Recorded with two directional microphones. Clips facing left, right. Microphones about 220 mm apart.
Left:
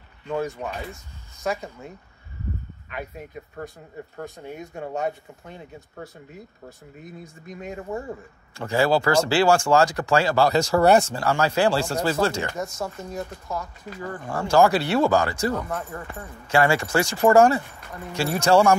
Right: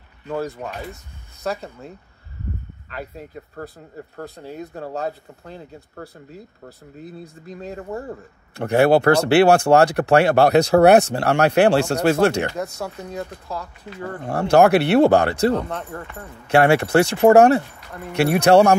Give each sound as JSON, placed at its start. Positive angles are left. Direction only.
{"t": 1.4, "sound": "speech", "side_deg": 15}
{"t": 4.2, "sound": "speech", "side_deg": -30}
{"t": 7.0, "sound": "speech", "side_deg": -35}
{"t": 8.5, "sound": "speech", "side_deg": -60}
{"t": 15.5, "sound": "speech", "side_deg": -30}
{"t": 16.4, "sound": "speech", "side_deg": -65}